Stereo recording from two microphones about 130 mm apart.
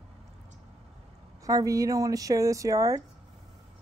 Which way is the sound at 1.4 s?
25° right (ahead or behind).